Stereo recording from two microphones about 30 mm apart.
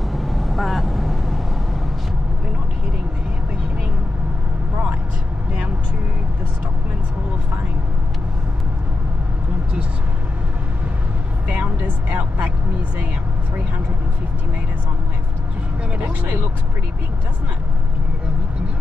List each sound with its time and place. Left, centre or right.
0.1 s vehicle: centre
11.8 s speech: right